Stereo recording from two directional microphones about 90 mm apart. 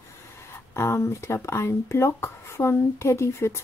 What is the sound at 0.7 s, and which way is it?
Speech, 30° left (ahead or behind).